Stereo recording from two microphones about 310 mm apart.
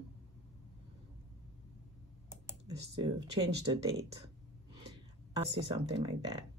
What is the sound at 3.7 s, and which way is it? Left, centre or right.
Speech, centre.